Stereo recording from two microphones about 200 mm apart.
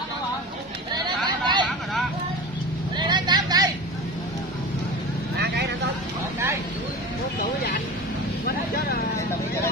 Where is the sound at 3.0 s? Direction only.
20° right (ahead or behind).